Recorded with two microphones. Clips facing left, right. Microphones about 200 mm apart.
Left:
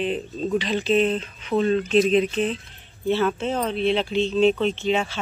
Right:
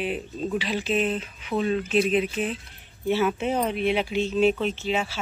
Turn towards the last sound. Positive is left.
turn(degrees=-5)  # may be behind; listen again after turning